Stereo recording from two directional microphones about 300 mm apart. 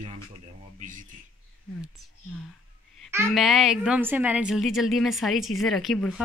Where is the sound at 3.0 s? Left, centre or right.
Centre.